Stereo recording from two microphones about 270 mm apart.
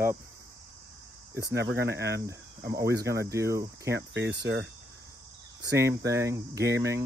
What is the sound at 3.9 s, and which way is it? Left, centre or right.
Cricket, right.